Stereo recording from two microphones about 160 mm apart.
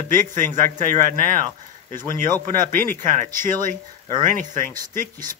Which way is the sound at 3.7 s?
55° right (ahead or behind).